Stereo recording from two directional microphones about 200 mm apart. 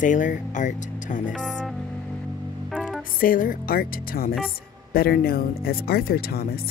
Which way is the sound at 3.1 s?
45° left (ahead or behind).